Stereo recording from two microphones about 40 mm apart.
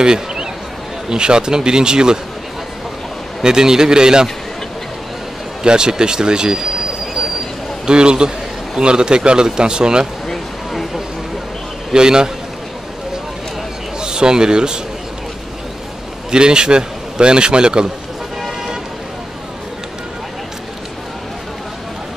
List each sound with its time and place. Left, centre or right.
0.0 s a sound: centre
1.0 s speech: right
3.4 s a man's voice: centre
5.6 s speech: centre
7.8 s speech: right
11.9 s speech: centre
13.9 s speech: centre
16.3 s a man's voice: right